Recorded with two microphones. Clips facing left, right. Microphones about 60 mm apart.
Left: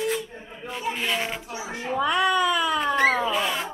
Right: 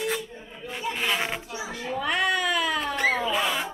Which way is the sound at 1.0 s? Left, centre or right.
Centre.